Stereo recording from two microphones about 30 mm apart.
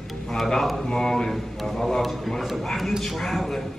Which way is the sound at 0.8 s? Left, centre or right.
Centre.